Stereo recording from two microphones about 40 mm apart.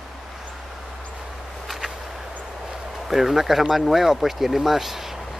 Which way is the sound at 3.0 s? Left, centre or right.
Centre.